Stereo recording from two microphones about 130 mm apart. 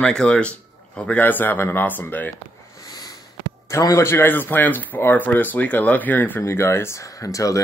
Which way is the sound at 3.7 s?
25° left (ahead or behind).